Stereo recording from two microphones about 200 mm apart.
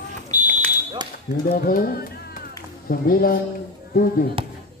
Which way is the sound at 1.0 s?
20° right (ahead or behind).